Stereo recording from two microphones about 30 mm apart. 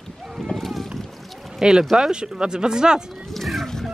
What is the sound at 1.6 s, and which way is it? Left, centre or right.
Speech, centre.